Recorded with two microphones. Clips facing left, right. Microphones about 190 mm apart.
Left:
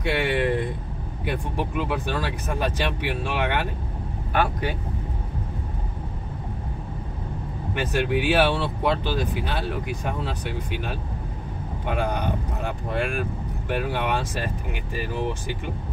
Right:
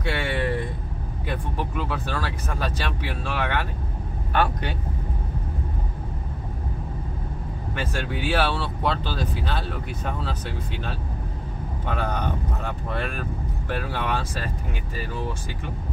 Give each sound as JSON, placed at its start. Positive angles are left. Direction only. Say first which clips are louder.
{"t": 0.0, "sound": "a sound", "louder": "left 3 dB", "side_deg": 20}
{"t": 1.2, "sound": "speech", "louder": "left 2 dB", "side_deg": 15}
{"t": 7.7, "sound": "speech", "louder": "left 6 dB", "side_deg": 15}